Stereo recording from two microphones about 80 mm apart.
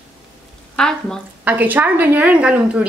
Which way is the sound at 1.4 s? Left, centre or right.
Right.